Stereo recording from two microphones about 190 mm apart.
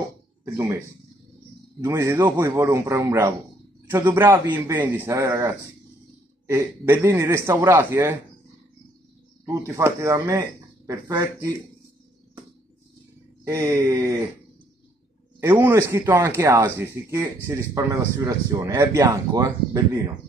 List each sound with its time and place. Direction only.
1.8 s a man's voice: 15° right (ahead or behind)
9.5 s speech: 15° right (ahead or behind)
13.4 s speech: 15° right (ahead or behind)
15.4 s speech: 10° right (ahead or behind)